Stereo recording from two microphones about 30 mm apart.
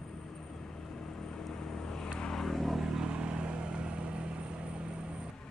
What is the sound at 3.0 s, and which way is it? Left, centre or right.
Vehicle, right.